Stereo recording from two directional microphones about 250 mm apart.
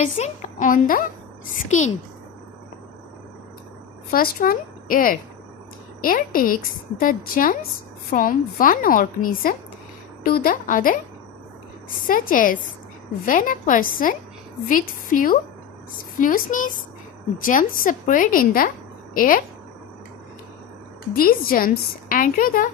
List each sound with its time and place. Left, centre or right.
0.2 s speech: left
4.1 s speech: left
12.1 s speech: left
21.1 s speech: left